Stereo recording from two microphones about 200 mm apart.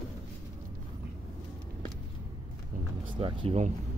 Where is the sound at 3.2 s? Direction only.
25° right (ahead or behind).